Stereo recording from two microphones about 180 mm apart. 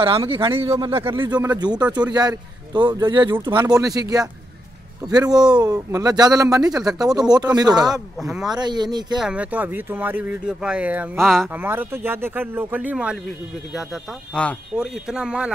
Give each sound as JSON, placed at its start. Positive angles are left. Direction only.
{"t": 0.0, "sound": "a man's voice", "side_deg": -30}
{"t": 0.7, "sound": "a man's voice", "side_deg": -20}
{"t": 6.7, "sound": "speech", "side_deg": 0}
{"t": 7.2, "sound": "a man's voice", "side_deg": -20}
{"t": 8.2, "sound": "speech", "side_deg": -5}
{"t": 8.5, "sound": "a man's voice", "side_deg": -25}
{"t": 9.2, "sound": "speech", "side_deg": -5}
{"t": 11.5, "sound": "speech", "side_deg": -10}
{"t": 14.4, "sound": "speech", "side_deg": 5}